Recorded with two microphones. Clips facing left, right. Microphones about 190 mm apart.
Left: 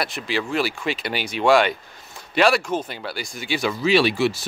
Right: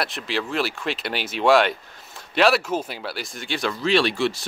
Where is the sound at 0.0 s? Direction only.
Centre (ahead or behind).